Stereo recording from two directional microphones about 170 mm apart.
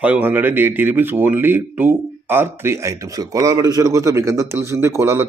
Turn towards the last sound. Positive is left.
turn(degrees=-15)  # may be behind; listen again after turning